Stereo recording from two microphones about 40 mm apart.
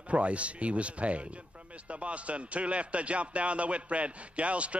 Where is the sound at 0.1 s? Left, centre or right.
Right.